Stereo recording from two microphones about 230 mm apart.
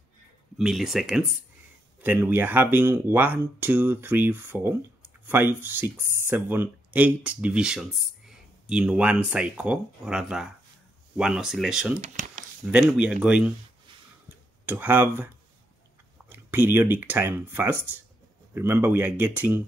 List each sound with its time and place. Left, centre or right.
0.6 s speech: centre
12.0 s a sound: right
12.9 s speech: centre
14.7 s speech: centre